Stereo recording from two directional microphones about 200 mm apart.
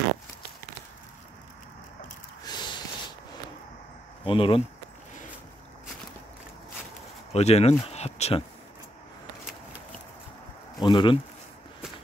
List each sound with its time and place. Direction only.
2.4 s snort: 20° left (ahead or behind)
4.2 s speech: 25° left (ahead or behind)
7.3 s speech: 30° left (ahead or behind)
10.8 s speech: 25° left (ahead or behind)